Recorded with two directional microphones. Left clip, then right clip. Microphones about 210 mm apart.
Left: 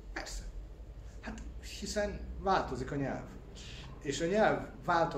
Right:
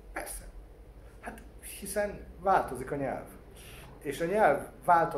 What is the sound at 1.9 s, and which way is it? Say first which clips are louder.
Speech: right 4 dB; 10° right (ahead or behind).